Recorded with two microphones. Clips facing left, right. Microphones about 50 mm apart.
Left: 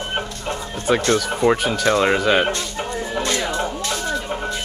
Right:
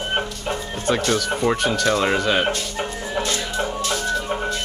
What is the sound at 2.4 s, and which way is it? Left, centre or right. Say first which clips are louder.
Music: even; centre.